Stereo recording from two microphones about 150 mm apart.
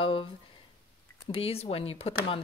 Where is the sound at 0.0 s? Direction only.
40° left (ahead or behind).